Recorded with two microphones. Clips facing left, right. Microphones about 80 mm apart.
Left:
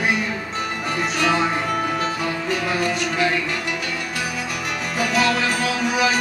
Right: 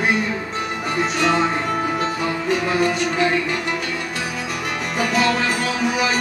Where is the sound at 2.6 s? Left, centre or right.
Centre.